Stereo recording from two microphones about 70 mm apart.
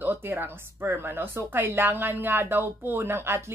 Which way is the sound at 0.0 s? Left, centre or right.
Right.